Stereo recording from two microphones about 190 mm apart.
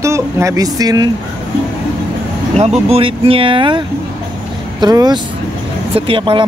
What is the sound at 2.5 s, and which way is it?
Speech, 35° right (ahead or behind).